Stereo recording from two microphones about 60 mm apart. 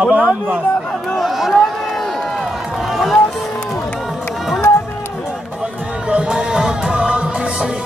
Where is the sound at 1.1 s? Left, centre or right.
Centre.